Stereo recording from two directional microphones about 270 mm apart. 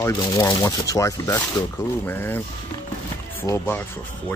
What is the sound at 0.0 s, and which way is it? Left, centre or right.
Speech, centre.